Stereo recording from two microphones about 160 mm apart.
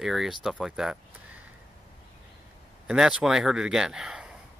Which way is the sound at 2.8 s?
5° right (ahead or behind).